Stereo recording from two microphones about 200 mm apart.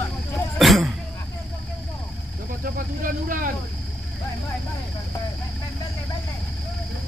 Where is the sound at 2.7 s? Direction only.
45° right (ahead or behind).